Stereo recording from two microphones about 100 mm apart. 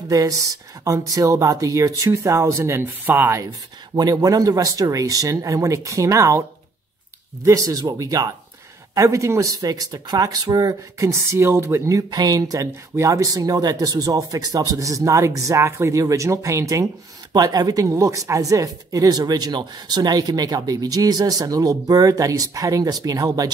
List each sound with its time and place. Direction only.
0.1 s speech: 35° right (ahead or behind)
3.9 s speech: 35° right (ahead or behind)
7.4 s speech: 35° right (ahead or behind)
12.1 s speech: 40° right (ahead or behind)